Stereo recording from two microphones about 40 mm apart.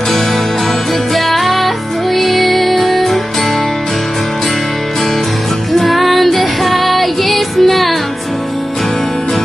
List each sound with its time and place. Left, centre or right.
1.1 s music: centre
5.7 s music: centre